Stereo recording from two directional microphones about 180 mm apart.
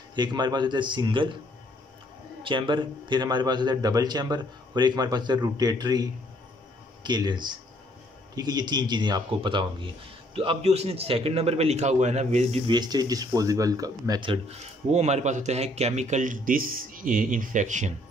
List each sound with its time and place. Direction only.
0.1 s a man's voice: 25° right (ahead or behind)
2.4 s a man's voice: 25° right (ahead or behind)
12.7 s speech: 20° right (ahead or behind); by 17.9 s 45° right (ahead or behind)